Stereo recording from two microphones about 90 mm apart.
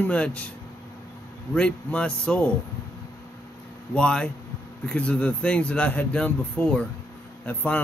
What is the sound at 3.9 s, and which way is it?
A man's voice, 10° left (ahead or behind).